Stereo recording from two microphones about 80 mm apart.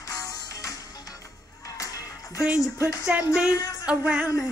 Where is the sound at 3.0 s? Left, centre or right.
Centre.